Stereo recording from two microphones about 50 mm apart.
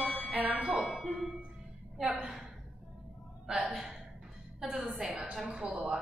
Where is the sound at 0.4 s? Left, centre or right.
Right.